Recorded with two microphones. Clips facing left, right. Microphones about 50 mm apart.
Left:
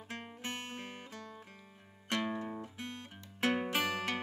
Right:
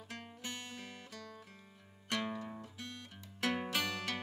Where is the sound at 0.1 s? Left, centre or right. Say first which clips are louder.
Left 4 dB; left.